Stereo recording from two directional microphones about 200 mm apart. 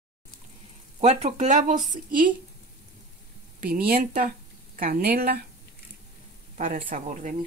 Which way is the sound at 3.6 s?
45° right (ahead or behind).